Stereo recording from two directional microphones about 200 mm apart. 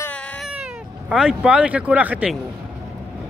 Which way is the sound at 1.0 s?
5° right (ahead or behind).